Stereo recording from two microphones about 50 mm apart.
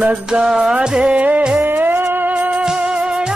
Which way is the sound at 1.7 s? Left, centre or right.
Right.